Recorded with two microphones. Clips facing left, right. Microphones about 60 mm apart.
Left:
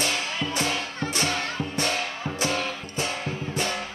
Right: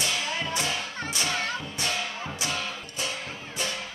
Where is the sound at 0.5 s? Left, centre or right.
Left.